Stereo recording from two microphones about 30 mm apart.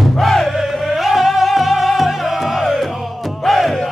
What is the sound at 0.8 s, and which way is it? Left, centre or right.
Music, centre.